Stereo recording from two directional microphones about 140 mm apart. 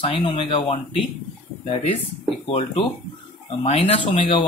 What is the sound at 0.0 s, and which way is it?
Speech, 40° left (ahead or behind).